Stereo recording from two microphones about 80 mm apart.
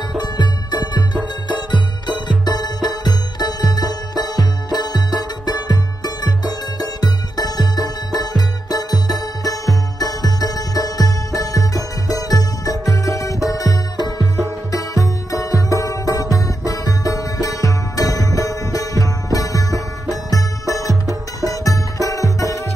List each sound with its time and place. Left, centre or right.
0.1 s music: left